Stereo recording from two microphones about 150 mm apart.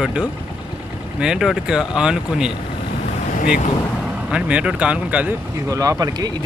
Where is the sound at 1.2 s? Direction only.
5° right (ahead or behind).